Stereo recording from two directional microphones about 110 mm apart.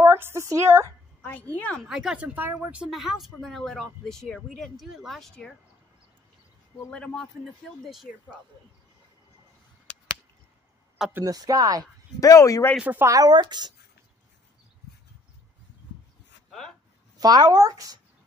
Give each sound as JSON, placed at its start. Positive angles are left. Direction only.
{"t": 0.0, "sound": "a woman's voice", "side_deg": -20}
{"t": 1.2, "sound": "a woman's voice", "side_deg": 15}
{"t": 1.8, "sound": "speech", "side_deg": -5}
{"t": 2.9, "sound": "speech", "side_deg": 0}
{"t": 6.9, "sound": "a woman's voice", "side_deg": 10}
{"t": 7.4, "sound": "speech", "side_deg": 0}
{"t": 11.2, "sound": "speech", "side_deg": -35}
{"t": 12.2, "sound": "speech", "side_deg": 30}
{"t": 12.7, "sound": "speech", "side_deg": -15}
{"t": 13.0, "sound": "speech", "side_deg": -35}
{"t": 16.4, "sound": "a sound", "side_deg": 5}
{"t": 17.2, "sound": "speech", "side_deg": -35}